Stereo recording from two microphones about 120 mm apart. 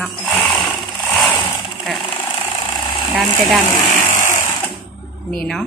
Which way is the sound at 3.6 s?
20° left (ahead or behind).